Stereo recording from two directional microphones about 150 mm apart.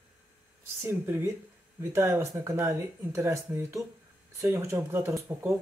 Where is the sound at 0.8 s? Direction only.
15° right (ahead or behind).